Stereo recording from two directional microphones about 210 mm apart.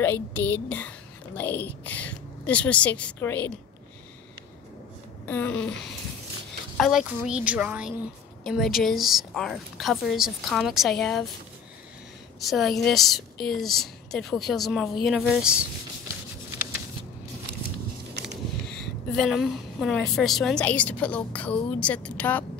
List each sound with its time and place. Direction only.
0.0 s a woman's voice: 10° left (ahead or behind)
5.2 s a woman's voice: 10° left (ahead or behind)
12.4 s a woman's voice: centre (ahead or behind)
18.2 s a sound: 55° right (ahead or behind)
19.1 s a woman's voice: centre (ahead or behind)